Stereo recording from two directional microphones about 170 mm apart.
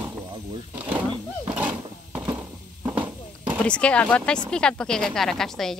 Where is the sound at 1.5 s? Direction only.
10° right (ahead or behind).